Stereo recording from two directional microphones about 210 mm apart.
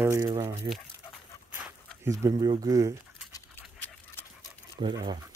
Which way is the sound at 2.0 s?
15° right (ahead or behind).